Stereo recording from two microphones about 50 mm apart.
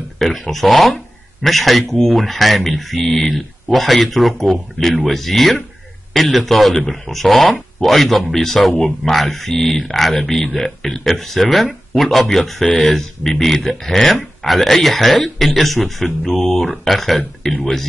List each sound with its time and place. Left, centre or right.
0.2 s speech: centre